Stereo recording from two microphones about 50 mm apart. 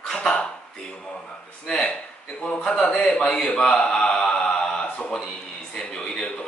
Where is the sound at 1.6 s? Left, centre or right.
Centre.